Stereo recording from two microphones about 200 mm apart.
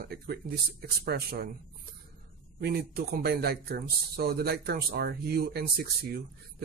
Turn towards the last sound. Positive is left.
turn(degrees=-50)  # may be behind; listen again after turning